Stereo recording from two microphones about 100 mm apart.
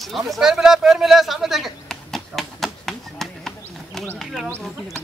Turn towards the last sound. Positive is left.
turn(degrees=0)  # may be behind; listen again after turning